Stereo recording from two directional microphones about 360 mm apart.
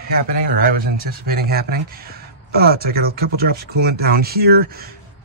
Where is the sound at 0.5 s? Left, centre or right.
Right.